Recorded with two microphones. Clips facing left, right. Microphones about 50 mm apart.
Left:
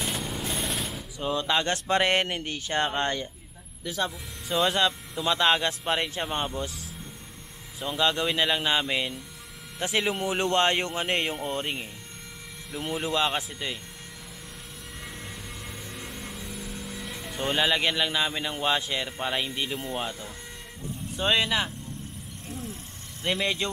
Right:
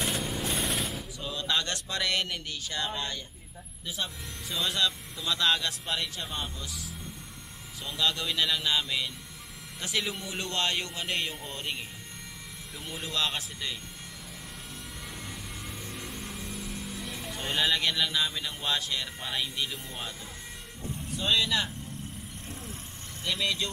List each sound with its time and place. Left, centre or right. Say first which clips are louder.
0.0 s jackhammer: even; centre
1.2 s speech: left 6 dB; left
4.6 s speech: left 2 dB; left
7.8 s a man's voice: left 5 dB; left
15.8 s vehicle: left 1 dB; centre
17.6 s a man's voice: left 2 dB; centre
21.2 s a man's voice: left 3 dB; left
23.2 s speech: left 3 dB; left